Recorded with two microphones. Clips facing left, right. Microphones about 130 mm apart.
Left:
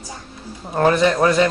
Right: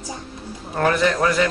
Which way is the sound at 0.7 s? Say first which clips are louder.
Left 3 dB; 20° left (ahead or behind).